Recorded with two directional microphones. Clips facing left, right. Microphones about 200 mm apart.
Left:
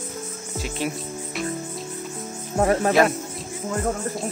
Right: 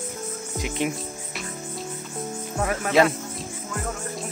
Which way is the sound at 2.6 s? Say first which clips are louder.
Left 6 dB; 30° left (ahead or behind).